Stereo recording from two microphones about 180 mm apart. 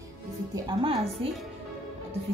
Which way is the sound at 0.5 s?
25° right (ahead or behind).